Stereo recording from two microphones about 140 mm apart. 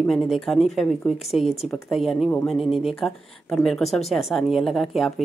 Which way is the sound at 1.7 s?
Centre (ahead or behind).